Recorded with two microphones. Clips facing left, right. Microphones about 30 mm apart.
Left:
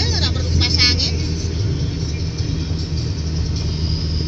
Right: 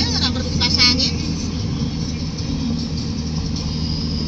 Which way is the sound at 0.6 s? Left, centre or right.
Right.